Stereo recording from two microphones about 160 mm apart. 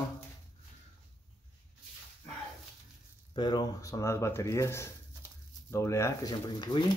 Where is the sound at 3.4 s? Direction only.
25° left (ahead or behind).